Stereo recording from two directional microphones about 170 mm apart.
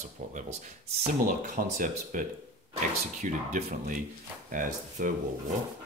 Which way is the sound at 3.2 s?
50° right (ahead or behind).